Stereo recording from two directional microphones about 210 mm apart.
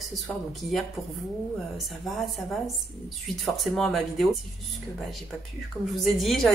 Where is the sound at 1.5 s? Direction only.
Centre (ahead or behind).